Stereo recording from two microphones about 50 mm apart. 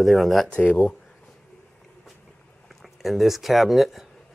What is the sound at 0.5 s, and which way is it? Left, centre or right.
Speech, left.